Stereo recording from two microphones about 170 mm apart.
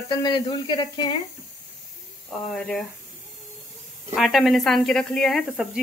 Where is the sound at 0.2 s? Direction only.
25° left (ahead or behind).